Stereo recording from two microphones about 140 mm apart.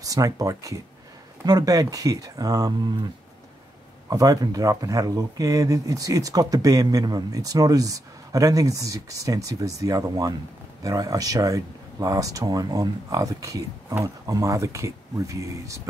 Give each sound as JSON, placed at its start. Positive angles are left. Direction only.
{"t": 0.0, "sound": "speech", "side_deg": -25}
{"t": 4.1, "sound": "speech", "side_deg": -25}